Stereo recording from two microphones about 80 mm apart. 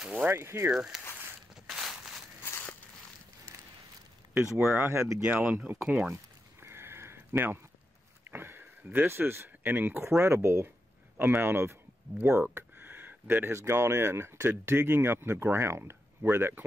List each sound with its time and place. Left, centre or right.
0.2 s speech: right
0.7 s speech: centre
1.7 s a sound: centre
2.4 s a sound: left
4.6 s speech: right
5.2 s speech: centre
5.8 s speech: centre
6.6 s a sound: right
8.3 s sniff: right
8.8 s speech: right